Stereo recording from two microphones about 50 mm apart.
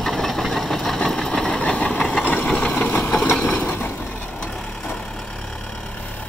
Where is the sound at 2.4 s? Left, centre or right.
Centre.